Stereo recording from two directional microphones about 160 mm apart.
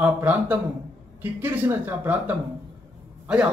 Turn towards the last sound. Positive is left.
turn(degrees=-5)  # may be behind; listen again after turning